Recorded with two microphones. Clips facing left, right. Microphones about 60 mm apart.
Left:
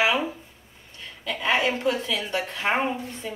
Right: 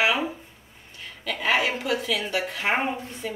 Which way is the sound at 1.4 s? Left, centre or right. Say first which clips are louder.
Left 1 dB; centre.